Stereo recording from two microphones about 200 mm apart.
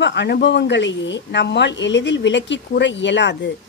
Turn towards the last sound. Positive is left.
turn(degrees=60)  # may be behind; listen again after turning